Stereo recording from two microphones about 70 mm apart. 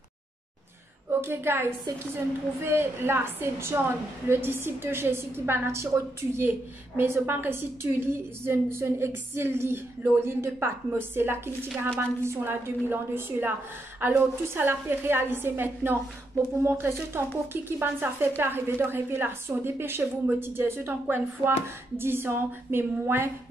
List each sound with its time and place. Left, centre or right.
1.2 s a woman's voice: right